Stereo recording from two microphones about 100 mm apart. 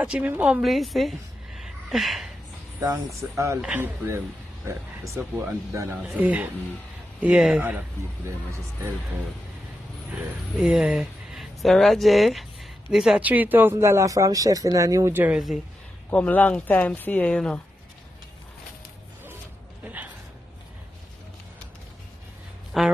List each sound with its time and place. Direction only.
0.0 s speech: 10° right (ahead or behind)
2.8 s speech: 35° right (ahead or behind)
3.2 s speech: 20° right (ahead or behind)
6.0 s speech: 15° right (ahead or behind)
8.5 s speech: 25° right (ahead or behind)
10.1 s speech: 10° right (ahead or behind)
13.2 s speech: 15° right (ahead or behind); by 15.1 s 35° right (ahead or behind)
15.1 s speech: 15° right (ahead or behind)
16.1 s speech: 15° left (ahead or behind)
19.8 s speech: 15° right (ahead or behind)
22.7 s speech: 5° right (ahead or behind)